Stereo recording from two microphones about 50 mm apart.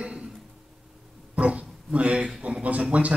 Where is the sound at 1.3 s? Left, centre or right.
Right.